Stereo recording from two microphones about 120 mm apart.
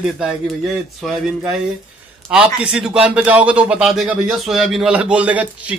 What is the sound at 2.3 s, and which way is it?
Speech, 10° right (ahead or behind).